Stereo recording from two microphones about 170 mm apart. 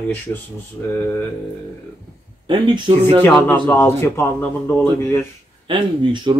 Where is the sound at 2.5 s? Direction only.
30° right (ahead or behind).